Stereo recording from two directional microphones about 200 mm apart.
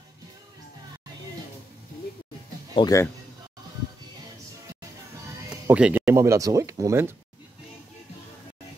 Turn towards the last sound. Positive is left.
turn(degrees=-15)  # may be behind; listen again after turning